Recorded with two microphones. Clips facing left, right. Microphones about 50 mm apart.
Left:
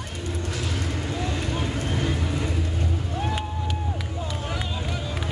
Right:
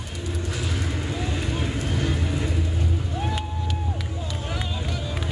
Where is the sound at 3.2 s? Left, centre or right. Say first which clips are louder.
Left 1 dB; centre.